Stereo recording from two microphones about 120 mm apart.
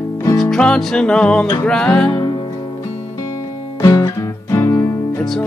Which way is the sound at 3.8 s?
30° left (ahead or behind).